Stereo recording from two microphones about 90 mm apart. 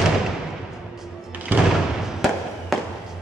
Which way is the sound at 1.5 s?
20° right (ahead or behind).